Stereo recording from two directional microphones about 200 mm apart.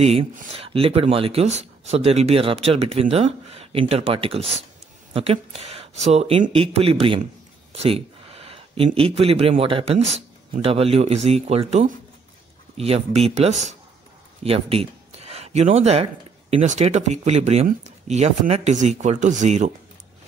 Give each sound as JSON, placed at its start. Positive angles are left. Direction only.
{"t": 0.0, "sound": "speech", "side_deg": -35}